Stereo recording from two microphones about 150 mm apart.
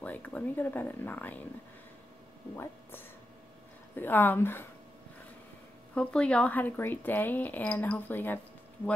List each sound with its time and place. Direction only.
0.0 s speech: 10° left (ahead or behind)
2.5 s speech: 15° left (ahead or behind)
5.9 s speech: 5° left (ahead or behind)